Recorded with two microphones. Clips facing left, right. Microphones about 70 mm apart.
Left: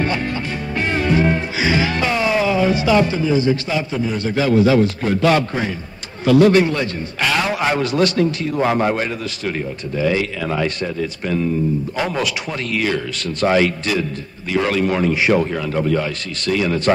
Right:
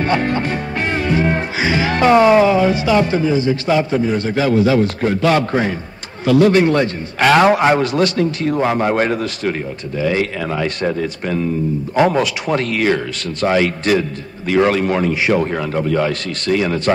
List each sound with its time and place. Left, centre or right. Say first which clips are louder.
0.0 s music: right 4 dB; right
1.9 s a man's voice: right 8 dB; right
5.4 s a man's voice: right 5 dB; right
6.2 s a man's voice: even; right
6.6 s a man's voice: right 5 dB; right
8.5 s a man's voice: left 1 dB; centre
8.9 s a man's voice: right 6 dB; right
10.0 s a man's voice: right 1 dB; right
10.8 s a man's voice: right 3 dB; right
12.4 s a man's voice: right 5 dB; right
16.0 s speech: right 5 dB; right
16.4 s a man's voice: right 1 dB; right